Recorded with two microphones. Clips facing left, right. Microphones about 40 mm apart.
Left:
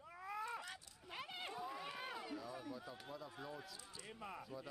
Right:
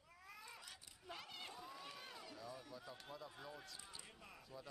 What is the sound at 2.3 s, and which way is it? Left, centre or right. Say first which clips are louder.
Speech: left 5 dB; centre.